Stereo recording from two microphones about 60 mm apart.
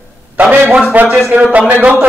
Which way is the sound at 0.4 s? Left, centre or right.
Right.